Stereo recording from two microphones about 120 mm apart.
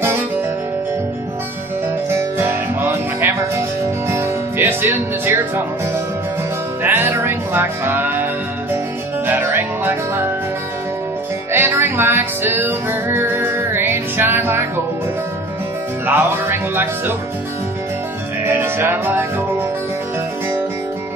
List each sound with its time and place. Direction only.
2.1 s music: 15° right (ahead or behind)
6.8 s music: 15° right (ahead or behind)
11.5 s music: 20° right (ahead or behind)
16.2 s speech: 20° right (ahead or behind)
18.5 s music: 20° right (ahead or behind)